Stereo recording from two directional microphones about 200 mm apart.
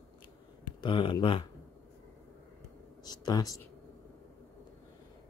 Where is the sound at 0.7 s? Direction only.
25° left (ahead or behind).